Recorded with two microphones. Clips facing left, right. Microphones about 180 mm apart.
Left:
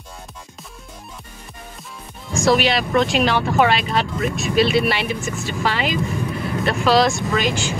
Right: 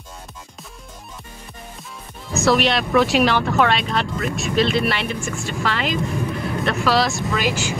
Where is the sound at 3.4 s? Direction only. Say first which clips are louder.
Left 1 dB; 5° left (ahead or behind).